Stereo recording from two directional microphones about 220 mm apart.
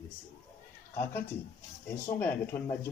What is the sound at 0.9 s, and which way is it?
A man's voice, 10° left (ahead or behind).